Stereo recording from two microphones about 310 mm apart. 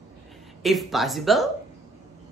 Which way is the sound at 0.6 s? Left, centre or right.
Centre.